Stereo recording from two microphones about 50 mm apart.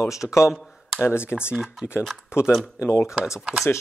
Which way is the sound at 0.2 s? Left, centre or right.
Centre.